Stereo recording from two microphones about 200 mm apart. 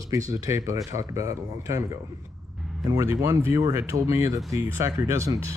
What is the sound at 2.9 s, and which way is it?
Speech, 15° right (ahead or behind).